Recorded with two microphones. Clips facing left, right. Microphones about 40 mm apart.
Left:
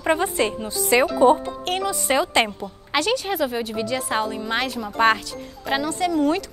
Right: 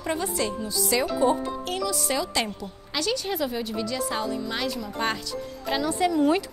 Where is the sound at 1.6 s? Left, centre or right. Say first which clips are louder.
Left 4 dB; left.